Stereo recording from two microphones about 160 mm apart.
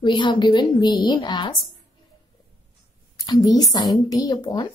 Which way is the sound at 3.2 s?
20° left (ahead or behind).